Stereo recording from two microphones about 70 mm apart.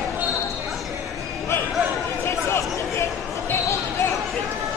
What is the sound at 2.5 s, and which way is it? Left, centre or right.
Chatter, left.